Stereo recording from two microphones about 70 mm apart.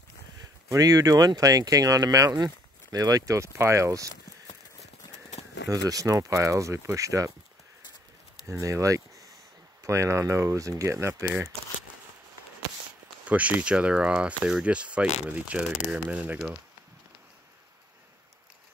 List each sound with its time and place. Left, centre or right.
0.7 s speech: right
3.5 s speech: right
5.7 s speech: right
8.5 s speech: right
13.3 s speech: right